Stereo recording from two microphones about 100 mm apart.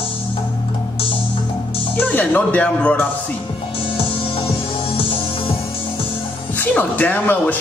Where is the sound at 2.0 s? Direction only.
15° left (ahead or behind).